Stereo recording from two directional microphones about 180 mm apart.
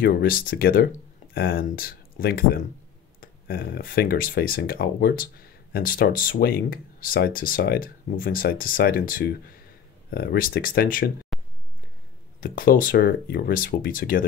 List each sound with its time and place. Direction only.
0.0 s speech: 55° left (ahead or behind)
11.3 s a sound: centre (ahead or behind)
12.4 s speech: 50° left (ahead or behind)